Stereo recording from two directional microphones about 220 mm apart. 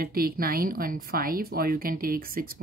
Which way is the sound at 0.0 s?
40° right (ahead or behind).